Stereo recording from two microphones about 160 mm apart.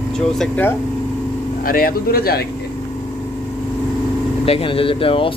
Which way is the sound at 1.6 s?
65° left (ahead or behind).